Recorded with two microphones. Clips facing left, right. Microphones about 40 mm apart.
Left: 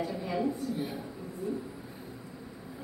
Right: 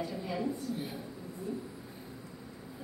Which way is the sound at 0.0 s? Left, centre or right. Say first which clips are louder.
Left 4 dB; centre.